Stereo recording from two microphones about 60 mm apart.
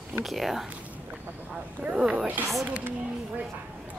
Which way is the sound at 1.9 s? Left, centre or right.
Centre.